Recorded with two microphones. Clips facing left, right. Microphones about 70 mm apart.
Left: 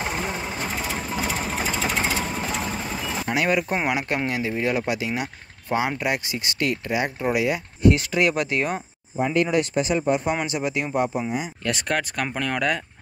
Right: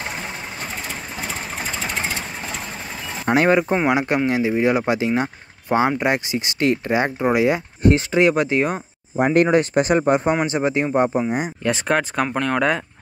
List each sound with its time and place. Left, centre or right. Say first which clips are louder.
1.9 s vehicle: left 2 dB; centre
3.4 s speech: right 5 dB; right
9.2 s speech: right 5 dB; right
10.4 s speech: right 6 dB; right
11.6 s speech: right 6 dB; right
12.2 s speech: right 5 dB; centre